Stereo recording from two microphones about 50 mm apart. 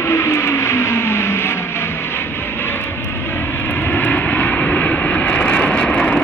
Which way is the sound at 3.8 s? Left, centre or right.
Left.